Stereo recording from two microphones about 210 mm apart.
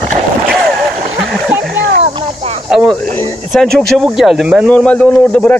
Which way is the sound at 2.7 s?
5° left (ahead or behind).